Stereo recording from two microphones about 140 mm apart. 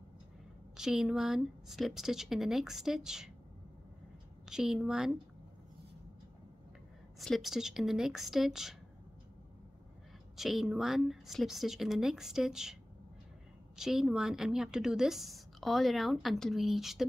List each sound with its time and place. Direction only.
0.7 s a woman's voice: 5° right (ahead or behind)
4.5 s a woman's voice: 5° right (ahead or behind)
7.2 s a woman's voice: centre (ahead or behind)
10.3 s a woman's voice: centre (ahead or behind)
13.7 s a woman's voice: 5° right (ahead or behind)